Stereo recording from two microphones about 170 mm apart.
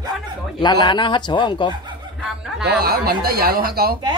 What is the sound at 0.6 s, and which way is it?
Speech, 25° left (ahead or behind).